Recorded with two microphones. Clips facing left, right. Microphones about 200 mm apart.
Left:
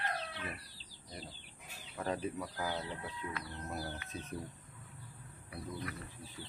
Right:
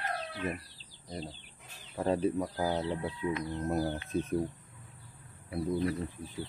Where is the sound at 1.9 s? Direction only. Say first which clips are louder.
Right 8 dB; 30° right (ahead or behind).